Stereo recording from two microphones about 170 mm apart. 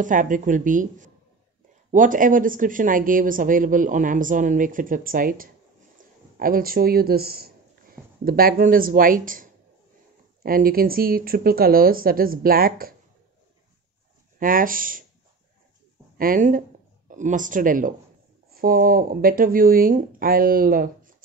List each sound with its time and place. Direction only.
0.0 s speech: 50° right (ahead or behind)
14.4 s speech: 55° right (ahead or behind)
16.2 s speech: 55° right (ahead or behind)